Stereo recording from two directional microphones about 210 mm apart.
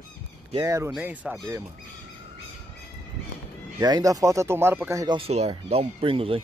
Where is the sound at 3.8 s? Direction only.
20° right (ahead or behind).